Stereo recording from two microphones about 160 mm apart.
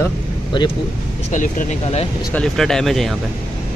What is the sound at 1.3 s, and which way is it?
Speech, 50° left (ahead or behind).